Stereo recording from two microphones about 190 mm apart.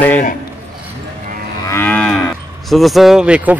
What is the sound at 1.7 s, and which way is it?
Moo, 10° left (ahead or behind).